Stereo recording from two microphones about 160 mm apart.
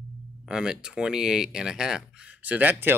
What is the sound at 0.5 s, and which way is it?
Speech, 5° right (ahead or behind).